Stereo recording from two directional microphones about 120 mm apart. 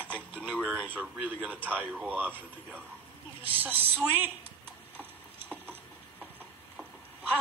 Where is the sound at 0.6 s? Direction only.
15° right (ahead or behind).